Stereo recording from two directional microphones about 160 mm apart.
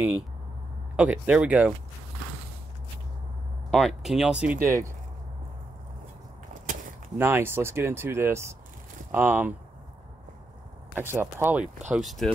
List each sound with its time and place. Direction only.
0.9 s speech: 10° right (ahead or behind)
3.7 s speech: centre (ahead or behind)
4.6 s speech: 20° right (ahead or behind)
7.2 s speech: 15° right (ahead or behind)
11.0 s speech: 15° right (ahead or behind)
11.9 s speech: centre (ahead or behind)